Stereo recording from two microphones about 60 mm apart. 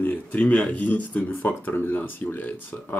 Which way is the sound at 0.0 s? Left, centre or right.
Left.